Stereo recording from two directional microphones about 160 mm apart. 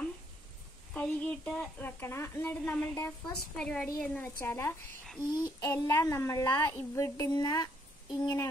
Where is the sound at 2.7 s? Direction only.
5° left (ahead or behind).